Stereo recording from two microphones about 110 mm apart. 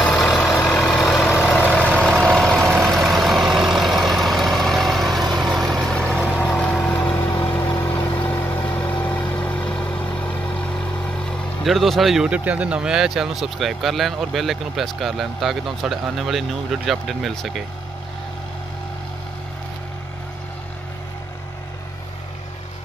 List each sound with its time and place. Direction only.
0.0 s vehicle: centre (ahead or behind)
7.2 s vehicle: 20° left (ahead or behind); by 17.6 s centre (ahead or behind)